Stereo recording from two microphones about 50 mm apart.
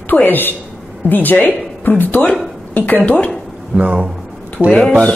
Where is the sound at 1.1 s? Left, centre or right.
Left.